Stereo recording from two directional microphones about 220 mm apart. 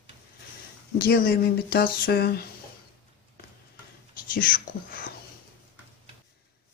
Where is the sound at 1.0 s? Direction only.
45° left (ahead or behind).